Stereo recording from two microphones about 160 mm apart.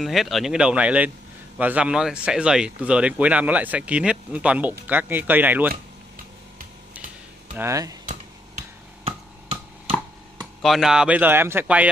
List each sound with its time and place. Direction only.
0.0 s speech: centre (ahead or behind)
7.5 s speech: 20° right (ahead or behind)
8.0 s a sound: 55° right (ahead or behind)
10.4 s speech: centre (ahead or behind)